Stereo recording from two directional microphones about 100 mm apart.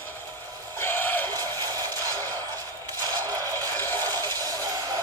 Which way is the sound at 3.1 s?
40° right (ahead or behind).